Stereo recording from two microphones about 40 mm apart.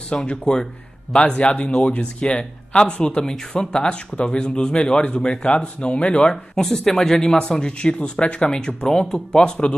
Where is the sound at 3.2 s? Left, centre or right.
Centre.